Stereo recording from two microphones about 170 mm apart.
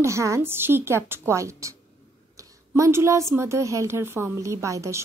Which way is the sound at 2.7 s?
15° right (ahead or behind).